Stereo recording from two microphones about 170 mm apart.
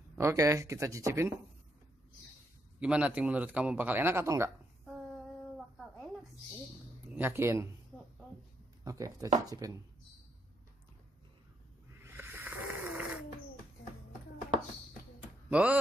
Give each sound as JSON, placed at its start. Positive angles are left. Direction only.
{"t": 0.2, "sound": "speech", "side_deg": -15}
{"t": 2.8, "sound": "speech", "side_deg": -5}
{"t": 7.2, "sound": "speech", "side_deg": -15}
{"t": 8.8, "sound": "speech", "side_deg": -20}
{"t": 12.0, "sound": "snoring", "side_deg": -10}
{"t": 15.5, "sound": "speech", "side_deg": -10}